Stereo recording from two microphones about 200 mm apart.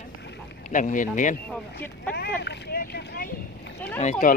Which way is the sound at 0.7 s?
40° left (ahead or behind).